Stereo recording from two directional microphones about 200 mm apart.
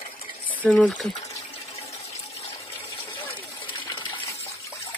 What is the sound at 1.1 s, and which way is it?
Water, 35° left (ahead or behind).